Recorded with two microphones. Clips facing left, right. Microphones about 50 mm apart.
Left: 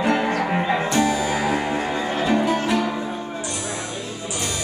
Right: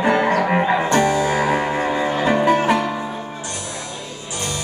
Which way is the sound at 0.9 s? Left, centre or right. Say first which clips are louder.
Right 2 dB; right.